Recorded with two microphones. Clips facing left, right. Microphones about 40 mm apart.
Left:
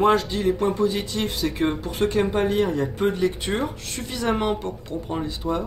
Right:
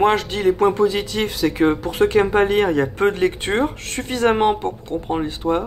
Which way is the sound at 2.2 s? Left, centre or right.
Right.